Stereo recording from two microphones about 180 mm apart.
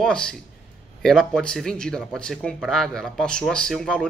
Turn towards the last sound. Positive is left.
turn(degrees=5)  # may be behind; listen again after turning